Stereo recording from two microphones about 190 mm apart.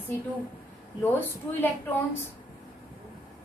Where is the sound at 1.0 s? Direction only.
10° left (ahead or behind).